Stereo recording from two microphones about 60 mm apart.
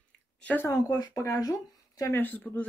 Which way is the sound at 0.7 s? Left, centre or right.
Left.